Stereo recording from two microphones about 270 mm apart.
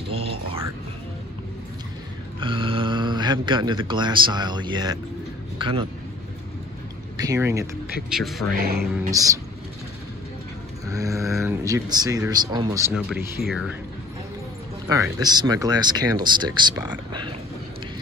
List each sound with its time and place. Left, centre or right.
0.1 s a sound: right
2.4 s a man's voice: centre
7.2 s speech: centre
8.1 s speech: centre
9.1 s speech: centre
10.9 s speech: centre
11.2 s speech: centre
11.6 s speech: centre
14.9 s speech: centre